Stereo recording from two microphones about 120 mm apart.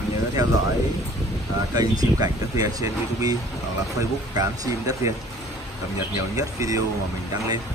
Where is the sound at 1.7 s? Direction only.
30° right (ahead or behind).